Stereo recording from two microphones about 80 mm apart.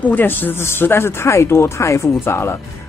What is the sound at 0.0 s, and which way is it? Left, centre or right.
Speech, left.